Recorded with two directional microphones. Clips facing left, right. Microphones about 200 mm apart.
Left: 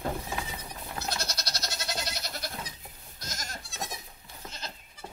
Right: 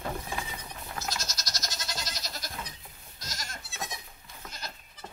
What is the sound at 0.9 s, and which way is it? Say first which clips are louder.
Goat: left 2 dB; 60° left (ahead or behind).